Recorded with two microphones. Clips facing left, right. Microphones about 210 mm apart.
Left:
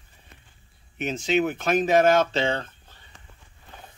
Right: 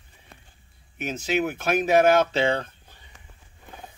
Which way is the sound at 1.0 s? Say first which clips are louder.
Left 2 dB; 5° right (ahead or behind).